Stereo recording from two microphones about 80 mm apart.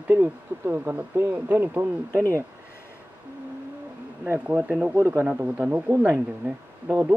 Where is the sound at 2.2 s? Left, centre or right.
Right.